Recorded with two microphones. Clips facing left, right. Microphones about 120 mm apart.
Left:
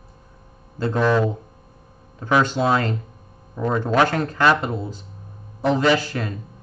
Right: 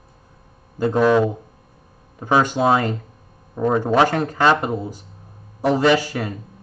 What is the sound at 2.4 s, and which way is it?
A man's voice, 15° right (ahead or behind).